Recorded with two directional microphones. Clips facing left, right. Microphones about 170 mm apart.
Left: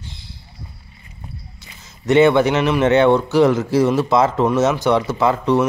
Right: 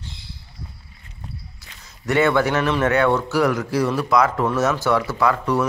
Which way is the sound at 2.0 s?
20° left (ahead or behind).